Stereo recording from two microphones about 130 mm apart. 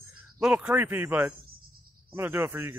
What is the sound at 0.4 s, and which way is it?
A man's voice, 10° right (ahead or behind).